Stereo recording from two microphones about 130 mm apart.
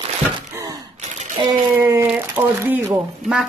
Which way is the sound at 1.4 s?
35° right (ahead or behind).